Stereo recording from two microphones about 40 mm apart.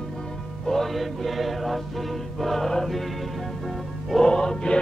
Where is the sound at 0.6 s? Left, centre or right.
Centre.